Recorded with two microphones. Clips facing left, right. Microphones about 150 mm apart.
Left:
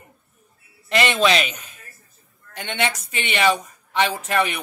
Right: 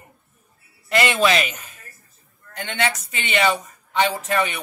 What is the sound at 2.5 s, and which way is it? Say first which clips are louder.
Speech: even; centre (ahead or behind).